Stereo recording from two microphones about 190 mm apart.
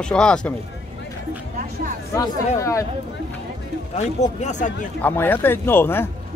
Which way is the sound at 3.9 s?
40° left (ahead or behind).